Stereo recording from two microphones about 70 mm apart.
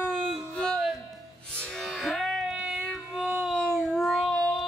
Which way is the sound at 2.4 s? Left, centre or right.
Centre.